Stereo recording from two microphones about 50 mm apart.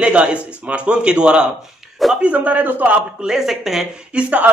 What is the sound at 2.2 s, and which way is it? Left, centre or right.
Speech, right.